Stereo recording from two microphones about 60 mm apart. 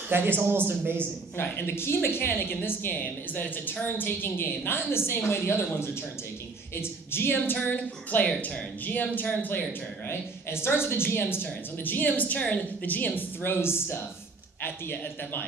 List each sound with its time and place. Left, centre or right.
0.1 s a man's voice: right
1.3 s speech: left
6.8 s speech: left